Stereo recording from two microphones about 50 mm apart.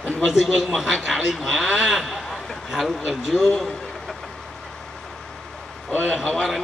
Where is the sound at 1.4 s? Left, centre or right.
Centre.